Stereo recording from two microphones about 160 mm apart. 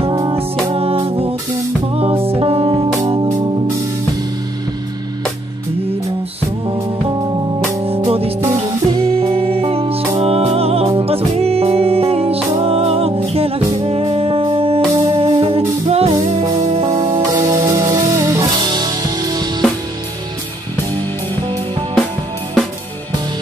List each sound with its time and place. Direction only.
0.0 s music: 35° right (ahead or behind)
8.1 s music: 40° right (ahead or behind)
8.4 s music: 20° right (ahead or behind)
9.2 s music: 35° right (ahead or behind)